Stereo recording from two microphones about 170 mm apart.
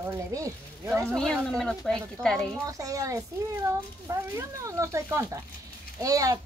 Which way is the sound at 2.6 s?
20° right (ahead or behind).